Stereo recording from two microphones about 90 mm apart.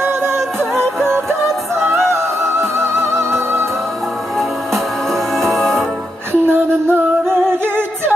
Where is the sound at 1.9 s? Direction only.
30° right (ahead or behind).